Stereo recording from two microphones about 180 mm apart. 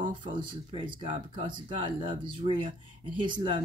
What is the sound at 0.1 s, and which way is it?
Speech, 25° right (ahead or behind).